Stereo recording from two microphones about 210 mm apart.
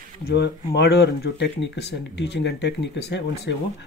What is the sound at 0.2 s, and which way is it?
Speech, 50° left (ahead or behind).